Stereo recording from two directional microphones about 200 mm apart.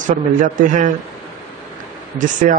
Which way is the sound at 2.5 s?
40° right (ahead or behind).